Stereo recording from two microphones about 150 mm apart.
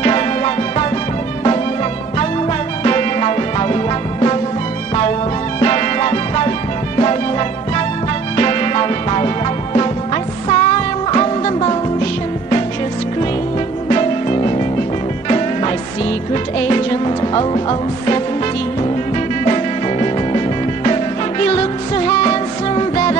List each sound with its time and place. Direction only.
0.0 s music: 40° left (ahead or behind)
2.8 s music: 40° left (ahead or behind)
5.6 s music: 35° left (ahead or behind)
13.8 s music: 35° left (ahead or behind)
19.4 s music: 35° left (ahead or behind)